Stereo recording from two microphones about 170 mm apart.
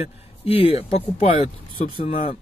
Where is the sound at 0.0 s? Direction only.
35° left (ahead or behind).